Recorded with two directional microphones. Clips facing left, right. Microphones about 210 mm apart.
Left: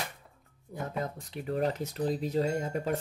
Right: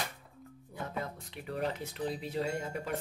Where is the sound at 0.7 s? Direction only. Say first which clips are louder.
Left 4 dB; 45° left (ahead or behind).